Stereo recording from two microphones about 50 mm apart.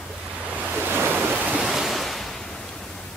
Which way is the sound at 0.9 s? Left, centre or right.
Right.